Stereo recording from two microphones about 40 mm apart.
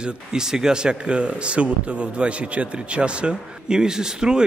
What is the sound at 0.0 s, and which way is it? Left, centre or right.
Speech, centre.